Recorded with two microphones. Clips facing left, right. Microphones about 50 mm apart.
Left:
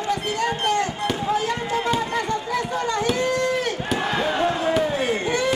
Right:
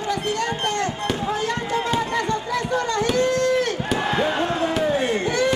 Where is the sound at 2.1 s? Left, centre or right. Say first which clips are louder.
Right 1 dB; left.